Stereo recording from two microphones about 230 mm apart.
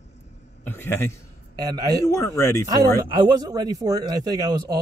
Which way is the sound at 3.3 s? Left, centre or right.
Centre.